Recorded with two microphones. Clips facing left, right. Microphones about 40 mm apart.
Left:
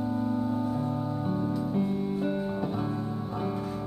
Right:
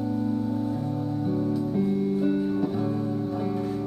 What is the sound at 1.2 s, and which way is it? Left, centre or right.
Music, centre.